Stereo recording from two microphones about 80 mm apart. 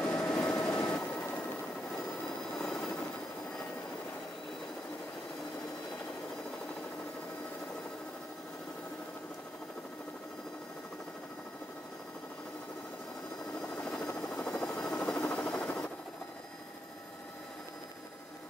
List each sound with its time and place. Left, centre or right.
0.0 s vehicle: centre
2.5 s vehicle: centre
13.6 s helicopter: centre
14.6 s vehicle: centre
15.2 s a sound: centre